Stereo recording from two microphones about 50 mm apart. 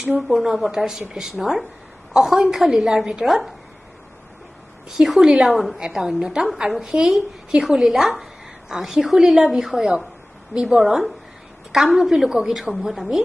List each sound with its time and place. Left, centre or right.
0.3 s a woman's voice: centre
4.8 s a woman's voice: centre
10.8 s a woman's voice: centre